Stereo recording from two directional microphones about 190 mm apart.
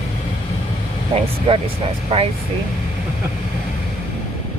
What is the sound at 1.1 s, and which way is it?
Speech, 30° right (ahead or behind).